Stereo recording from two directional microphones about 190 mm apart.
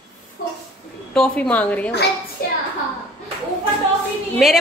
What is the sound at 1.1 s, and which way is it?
Speech, 5° left (ahead or behind).